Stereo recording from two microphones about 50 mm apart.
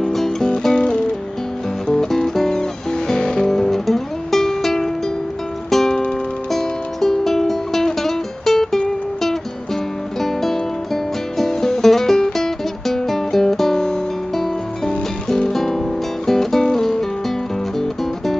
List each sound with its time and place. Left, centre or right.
0.0 s music: centre
0.7 s music: centre